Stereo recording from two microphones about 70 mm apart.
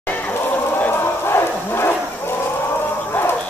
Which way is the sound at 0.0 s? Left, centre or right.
Left.